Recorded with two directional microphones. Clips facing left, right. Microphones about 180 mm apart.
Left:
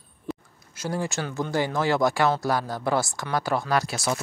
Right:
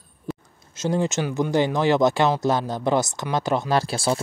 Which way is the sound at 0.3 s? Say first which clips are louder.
Right 1 dB; centre (ahead or behind).